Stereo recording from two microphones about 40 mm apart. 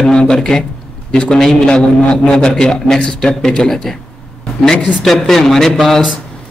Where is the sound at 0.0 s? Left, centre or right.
Left.